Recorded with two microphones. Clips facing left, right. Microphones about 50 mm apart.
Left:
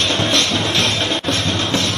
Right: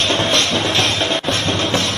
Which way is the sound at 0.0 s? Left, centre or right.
Right.